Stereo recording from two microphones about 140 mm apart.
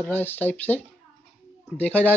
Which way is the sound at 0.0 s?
15° left (ahead or behind).